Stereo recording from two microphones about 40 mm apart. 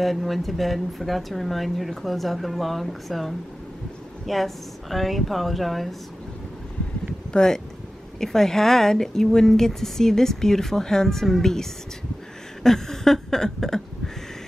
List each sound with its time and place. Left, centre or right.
0.0 s speech: centre
7.3 s a woman's voice: centre
12.6 s a sound: centre